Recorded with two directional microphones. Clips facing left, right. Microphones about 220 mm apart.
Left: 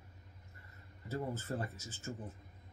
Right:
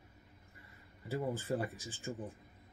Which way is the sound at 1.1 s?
15° right (ahead or behind).